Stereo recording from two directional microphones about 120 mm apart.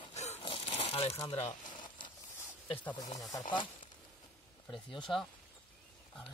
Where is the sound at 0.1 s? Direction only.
65° left (ahead or behind).